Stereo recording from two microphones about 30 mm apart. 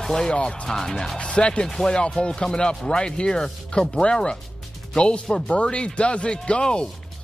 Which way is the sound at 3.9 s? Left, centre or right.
Left.